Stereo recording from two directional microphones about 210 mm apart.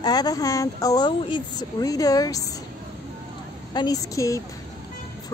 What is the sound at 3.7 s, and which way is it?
Speech, 20° left (ahead or behind).